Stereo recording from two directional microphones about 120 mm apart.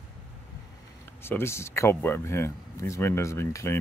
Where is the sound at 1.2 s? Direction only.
20° left (ahead or behind).